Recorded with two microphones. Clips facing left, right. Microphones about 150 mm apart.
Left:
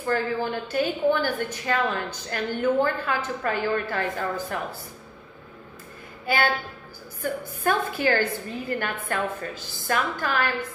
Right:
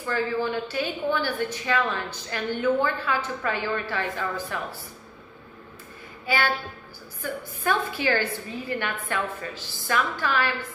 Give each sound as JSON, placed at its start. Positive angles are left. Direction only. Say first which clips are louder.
{"t": 0.0, "sound": "a woman's voice", "louder": "left 1 dB", "side_deg": 45}
{"t": 6.2, "sound": "a woman's voice", "louder": "left 2 dB", "side_deg": 50}